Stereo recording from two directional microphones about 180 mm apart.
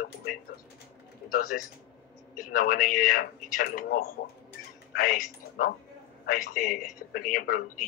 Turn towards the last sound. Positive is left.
turn(degrees=50)  # may be behind; listen again after turning